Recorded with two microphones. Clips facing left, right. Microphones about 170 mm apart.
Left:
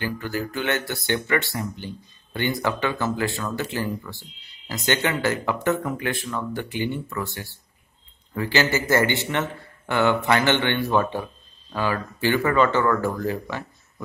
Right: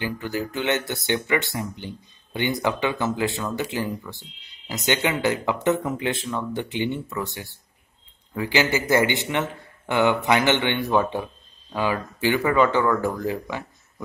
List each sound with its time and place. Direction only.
0.0 s speech: 15° right (ahead or behind)
8.4 s speech: 15° right (ahead or behind)